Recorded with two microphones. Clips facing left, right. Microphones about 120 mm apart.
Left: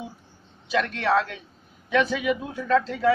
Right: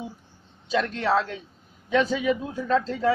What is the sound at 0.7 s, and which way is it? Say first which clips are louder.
Speech: even; 30° right (ahead or behind).